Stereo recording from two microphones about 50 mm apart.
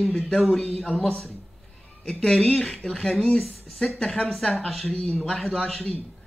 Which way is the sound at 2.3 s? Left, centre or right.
Centre.